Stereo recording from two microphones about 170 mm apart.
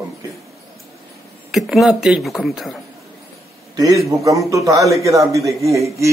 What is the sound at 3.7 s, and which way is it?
A man's voice, 20° right (ahead or behind).